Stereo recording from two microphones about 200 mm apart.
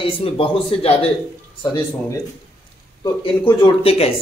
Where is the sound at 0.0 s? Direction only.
25° left (ahead or behind).